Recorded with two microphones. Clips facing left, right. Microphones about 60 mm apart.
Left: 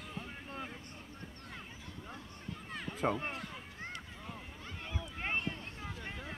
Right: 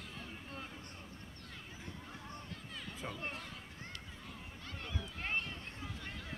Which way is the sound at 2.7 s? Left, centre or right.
Left.